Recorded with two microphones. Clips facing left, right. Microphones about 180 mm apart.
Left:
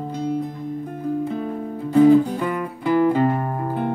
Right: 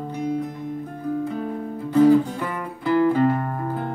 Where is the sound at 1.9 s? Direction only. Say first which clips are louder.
Left 2 dB; 15° left (ahead or behind).